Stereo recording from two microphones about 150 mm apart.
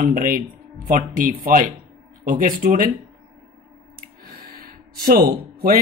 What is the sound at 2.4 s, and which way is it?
Speech, 70° right (ahead or behind).